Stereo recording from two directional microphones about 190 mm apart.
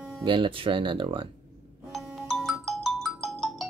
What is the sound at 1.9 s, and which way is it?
Ringtone, centre (ahead or behind).